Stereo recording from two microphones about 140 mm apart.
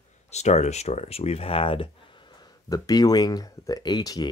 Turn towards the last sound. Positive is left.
turn(degrees=30)  # may be behind; listen again after turning